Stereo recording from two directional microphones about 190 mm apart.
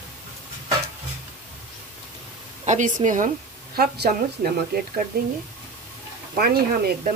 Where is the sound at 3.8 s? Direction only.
55° right (ahead or behind).